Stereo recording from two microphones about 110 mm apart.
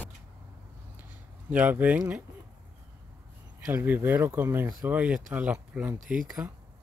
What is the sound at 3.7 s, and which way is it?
Speech, 20° right (ahead or behind).